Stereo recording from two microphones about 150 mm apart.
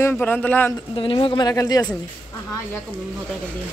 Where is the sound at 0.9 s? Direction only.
35° left (ahead or behind).